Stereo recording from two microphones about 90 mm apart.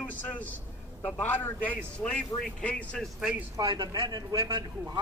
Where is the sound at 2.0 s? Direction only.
10° left (ahead or behind).